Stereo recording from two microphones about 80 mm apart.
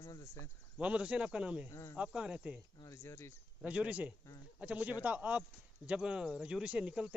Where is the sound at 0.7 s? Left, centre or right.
Centre.